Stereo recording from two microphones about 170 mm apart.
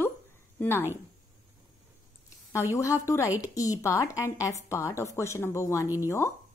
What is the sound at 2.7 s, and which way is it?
A woman's voice, 15° left (ahead or behind).